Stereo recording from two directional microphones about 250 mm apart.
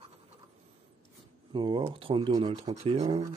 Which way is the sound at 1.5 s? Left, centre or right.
Centre.